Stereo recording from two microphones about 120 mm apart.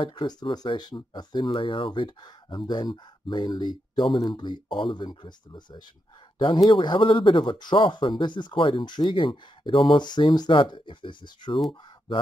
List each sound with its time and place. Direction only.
0.0 s speech: 40° left (ahead or behind)